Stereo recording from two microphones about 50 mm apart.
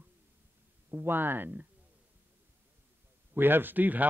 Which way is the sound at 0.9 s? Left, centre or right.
Right.